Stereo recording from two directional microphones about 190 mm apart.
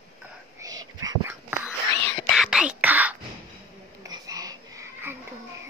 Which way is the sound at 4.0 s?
20° right (ahead or behind).